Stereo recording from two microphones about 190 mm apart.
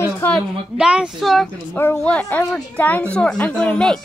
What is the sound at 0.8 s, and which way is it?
Speech, 5° right (ahead or behind).